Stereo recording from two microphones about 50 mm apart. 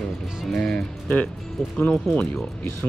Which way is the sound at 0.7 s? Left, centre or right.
Left.